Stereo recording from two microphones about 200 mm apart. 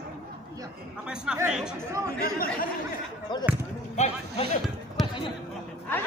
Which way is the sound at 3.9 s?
35° left (ahead or behind).